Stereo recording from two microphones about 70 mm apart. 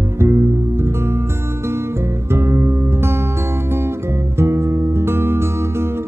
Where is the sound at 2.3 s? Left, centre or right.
Right.